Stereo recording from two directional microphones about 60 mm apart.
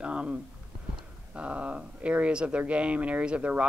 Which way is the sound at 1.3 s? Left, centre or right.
Right.